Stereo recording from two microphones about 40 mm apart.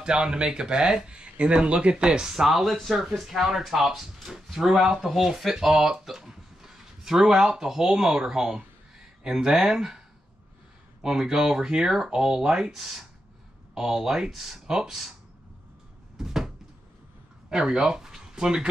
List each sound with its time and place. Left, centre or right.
0.0 s speech: right
2.4 s speech: centre
16.2 s cupboard open or close: centre
17.5 s speech: centre